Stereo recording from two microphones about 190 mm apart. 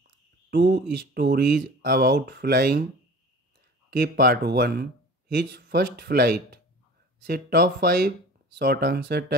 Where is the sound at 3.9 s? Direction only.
55° right (ahead or behind).